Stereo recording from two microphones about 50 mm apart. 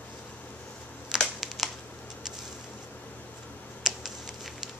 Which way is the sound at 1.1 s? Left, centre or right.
Centre.